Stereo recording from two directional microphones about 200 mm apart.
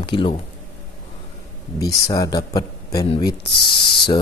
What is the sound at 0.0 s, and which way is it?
Speech, 25° left (ahead or behind).